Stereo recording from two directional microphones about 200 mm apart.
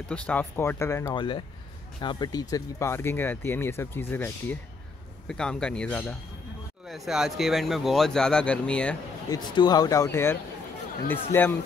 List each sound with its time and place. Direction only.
0.1 s speech: 10° left (ahead or behind)
1.1 s speech: 25° left (ahead or behind); by 8.9 s 5° left (ahead or behind)
9.3 s speech: 20° left (ahead or behind)
11.3 s speech: 10° left (ahead or behind)